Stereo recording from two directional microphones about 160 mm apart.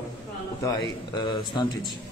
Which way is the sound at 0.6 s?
25° left (ahead or behind).